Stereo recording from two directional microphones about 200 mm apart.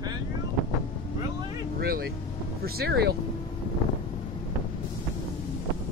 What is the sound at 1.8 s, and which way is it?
Speech, 50° right (ahead or behind).